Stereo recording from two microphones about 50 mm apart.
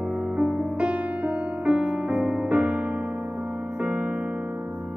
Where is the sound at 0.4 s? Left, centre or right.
Right.